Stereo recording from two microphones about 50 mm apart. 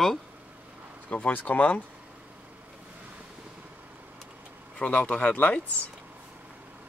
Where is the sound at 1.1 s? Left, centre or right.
Left.